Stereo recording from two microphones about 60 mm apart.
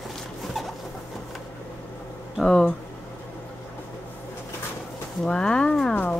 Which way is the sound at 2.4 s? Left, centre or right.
Centre.